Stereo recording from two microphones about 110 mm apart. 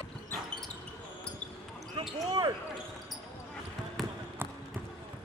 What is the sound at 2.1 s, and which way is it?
Speech, 35° right (ahead or behind).